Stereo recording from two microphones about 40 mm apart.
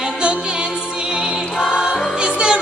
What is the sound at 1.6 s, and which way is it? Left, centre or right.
Music, centre.